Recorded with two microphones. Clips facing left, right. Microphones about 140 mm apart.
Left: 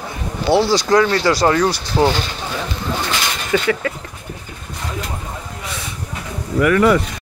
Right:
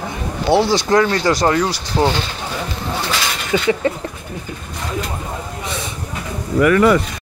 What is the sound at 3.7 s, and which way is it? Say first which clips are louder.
Speech: right 3 dB; 25° right (ahead or behind).